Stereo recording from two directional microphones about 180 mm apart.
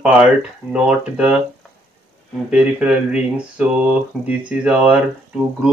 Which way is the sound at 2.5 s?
5° right (ahead or behind).